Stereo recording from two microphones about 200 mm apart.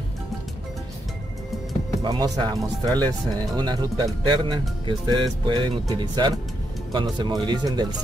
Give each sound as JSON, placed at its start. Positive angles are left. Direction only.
{"t": 2.0, "sound": "speech", "side_deg": -20}